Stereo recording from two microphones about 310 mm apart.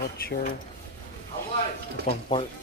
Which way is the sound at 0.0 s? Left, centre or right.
Left.